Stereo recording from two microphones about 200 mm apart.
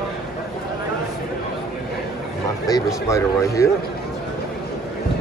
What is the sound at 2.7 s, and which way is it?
Speech, 15° left (ahead or behind).